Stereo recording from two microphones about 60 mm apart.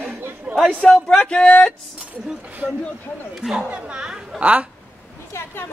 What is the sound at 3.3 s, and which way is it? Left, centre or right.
A woman's voice, centre.